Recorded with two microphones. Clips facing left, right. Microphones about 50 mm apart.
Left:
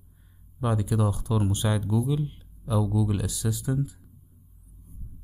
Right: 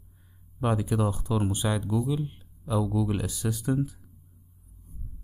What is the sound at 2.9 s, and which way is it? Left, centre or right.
Speech, right.